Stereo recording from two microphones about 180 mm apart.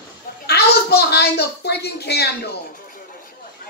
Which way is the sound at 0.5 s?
65° left (ahead or behind).